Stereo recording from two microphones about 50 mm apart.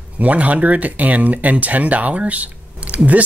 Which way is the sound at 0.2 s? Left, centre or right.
Right.